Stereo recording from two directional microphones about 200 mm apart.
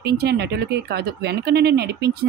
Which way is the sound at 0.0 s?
50° right (ahead or behind).